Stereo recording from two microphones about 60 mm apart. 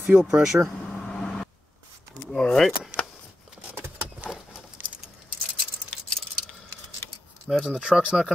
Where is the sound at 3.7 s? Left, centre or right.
Right.